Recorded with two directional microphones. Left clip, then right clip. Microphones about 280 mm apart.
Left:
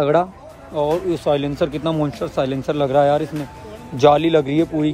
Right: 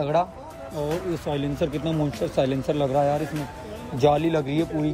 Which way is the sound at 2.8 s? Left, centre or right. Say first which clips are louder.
Left 8 dB; left.